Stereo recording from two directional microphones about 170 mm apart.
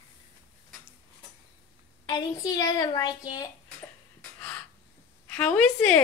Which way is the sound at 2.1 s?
20° left (ahead or behind).